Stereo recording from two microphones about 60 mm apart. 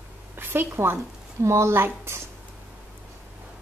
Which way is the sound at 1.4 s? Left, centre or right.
Right.